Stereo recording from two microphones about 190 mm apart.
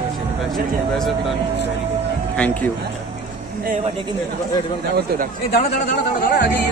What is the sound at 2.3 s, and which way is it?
Speech, 5° left (ahead or behind).